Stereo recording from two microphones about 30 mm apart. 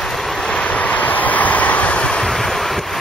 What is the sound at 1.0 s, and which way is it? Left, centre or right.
Vehicle, left.